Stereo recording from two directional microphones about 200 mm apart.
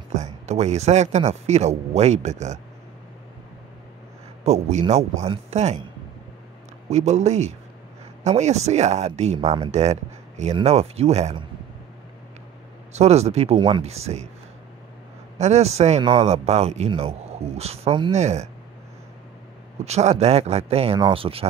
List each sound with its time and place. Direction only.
0.1 s speech: 35° right (ahead or behind)
4.5 s speech: 35° right (ahead or behind)
6.9 s speech: 35° right (ahead or behind)
12.9 s speech: 35° right (ahead or behind)
15.3 s speech: 35° right (ahead or behind)
19.8 s speech: 35° right (ahead or behind)